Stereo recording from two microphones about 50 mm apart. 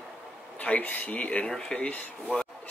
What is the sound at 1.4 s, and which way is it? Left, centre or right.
Speech, centre.